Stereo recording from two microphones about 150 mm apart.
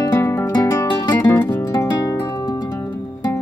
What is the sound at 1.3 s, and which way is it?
Music, 10° left (ahead or behind).